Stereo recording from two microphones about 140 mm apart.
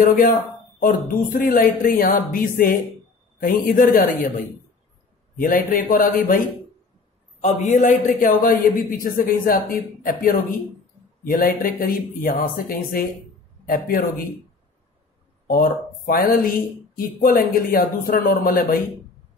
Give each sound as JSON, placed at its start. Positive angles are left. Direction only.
{"t": 0.0, "sound": "speech", "side_deg": 85}
{"t": 5.4, "sound": "speech", "side_deg": 85}
{"t": 7.4, "sound": "a man's voice", "side_deg": 60}
{"t": 9.0, "sound": "speech", "side_deg": 90}
{"t": 15.4, "sound": "speech", "side_deg": 90}